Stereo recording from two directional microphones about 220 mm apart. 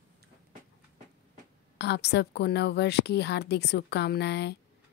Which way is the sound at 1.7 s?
50° left (ahead or behind).